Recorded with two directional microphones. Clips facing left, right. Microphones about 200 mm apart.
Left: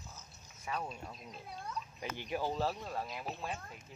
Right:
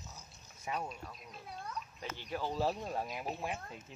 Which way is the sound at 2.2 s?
15° left (ahead or behind).